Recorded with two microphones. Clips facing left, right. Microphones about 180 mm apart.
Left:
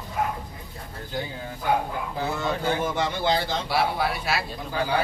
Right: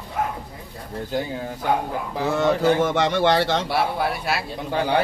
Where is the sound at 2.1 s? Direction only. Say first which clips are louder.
Right 8 dB; 80° right.